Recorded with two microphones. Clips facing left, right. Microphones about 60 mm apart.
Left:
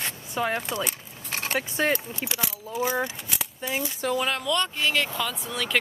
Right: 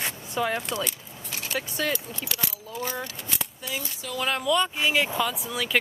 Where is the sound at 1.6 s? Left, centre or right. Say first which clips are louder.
Left 3 dB; left.